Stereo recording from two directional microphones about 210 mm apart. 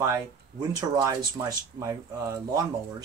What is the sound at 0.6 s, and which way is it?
Speech, 15° right (ahead or behind).